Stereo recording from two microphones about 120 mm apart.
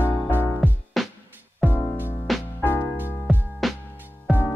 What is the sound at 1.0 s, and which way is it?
Music, centre (ahead or behind).